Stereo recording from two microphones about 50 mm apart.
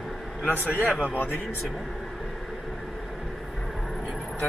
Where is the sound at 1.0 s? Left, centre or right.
Left.